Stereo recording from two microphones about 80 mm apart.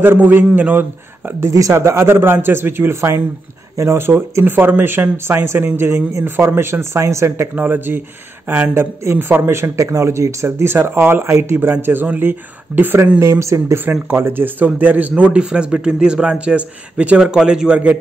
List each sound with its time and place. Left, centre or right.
0.0 s speech: right
1.5 s a man's voice: right
7.5 s speech: right
13.2 s a man's voice: right
14.0 s speech: right